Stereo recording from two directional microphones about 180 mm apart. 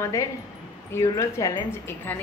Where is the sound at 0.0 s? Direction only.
15° left (ahead or behind).